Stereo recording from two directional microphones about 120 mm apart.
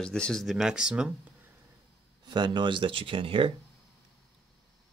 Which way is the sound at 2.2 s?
40° right (ahead or behind).